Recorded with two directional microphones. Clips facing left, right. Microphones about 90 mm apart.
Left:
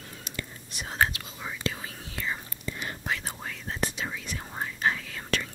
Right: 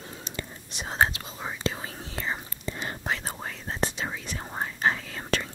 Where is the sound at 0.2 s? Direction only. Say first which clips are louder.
Left 1 dB; 25° right (ahead or behind).